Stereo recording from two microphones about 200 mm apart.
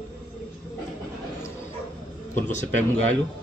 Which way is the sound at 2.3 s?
35° left (ahead or behind).